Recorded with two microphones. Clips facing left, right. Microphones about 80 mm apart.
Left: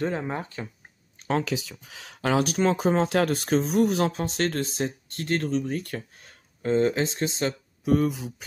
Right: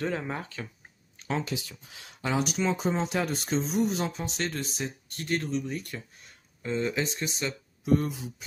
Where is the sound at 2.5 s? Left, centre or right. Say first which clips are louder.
Left 5 dB; left.